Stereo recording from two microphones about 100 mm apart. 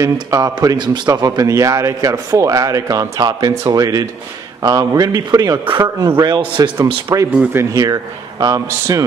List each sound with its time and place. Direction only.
0.0 s a man's voice: 35° right (ahead or behind)